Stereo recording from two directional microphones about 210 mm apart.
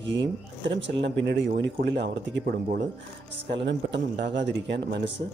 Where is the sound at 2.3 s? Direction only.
45° right (ahead or behind).